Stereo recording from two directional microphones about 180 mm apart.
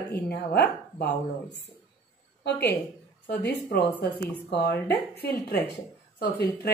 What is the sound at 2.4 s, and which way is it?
Speech, 65° left (ahead or behind).